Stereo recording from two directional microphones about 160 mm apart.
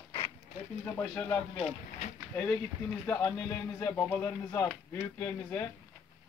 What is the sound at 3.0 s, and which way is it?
Speech, 10° left (ahead or behind).